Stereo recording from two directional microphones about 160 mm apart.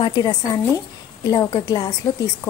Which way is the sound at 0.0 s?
25° left (ahead or behind).